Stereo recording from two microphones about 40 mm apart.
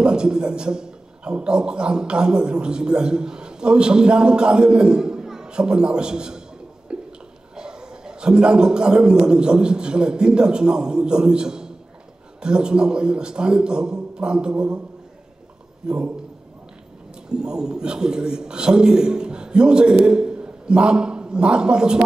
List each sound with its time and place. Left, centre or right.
0.0 s a man's voice: right
6.9 s a sound: right
7.5 s a man's voice: centre
15.8 s a man's voice: right
17.3 s a man's voice: centre